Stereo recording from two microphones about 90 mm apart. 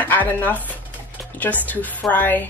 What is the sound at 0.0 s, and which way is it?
A woman's voice, 20° left (ahead or behind).